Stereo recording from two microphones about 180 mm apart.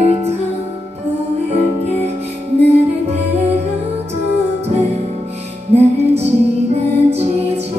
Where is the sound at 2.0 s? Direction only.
35° right (ahead or behind).